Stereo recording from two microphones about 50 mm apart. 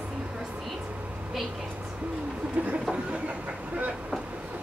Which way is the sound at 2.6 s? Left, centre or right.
Right.